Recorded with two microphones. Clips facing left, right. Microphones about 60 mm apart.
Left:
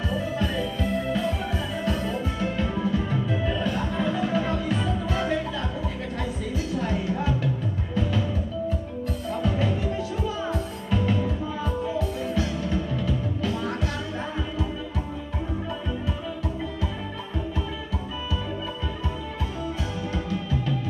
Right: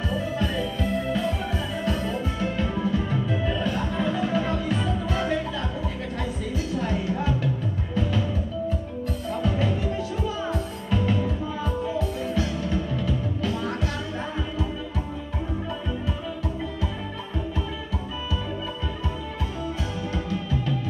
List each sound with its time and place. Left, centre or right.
0.1 s music: centre
6.8 s music: centre
9.3 s music: centre